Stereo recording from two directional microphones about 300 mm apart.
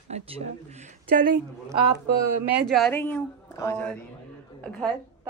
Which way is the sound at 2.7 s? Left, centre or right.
Centre.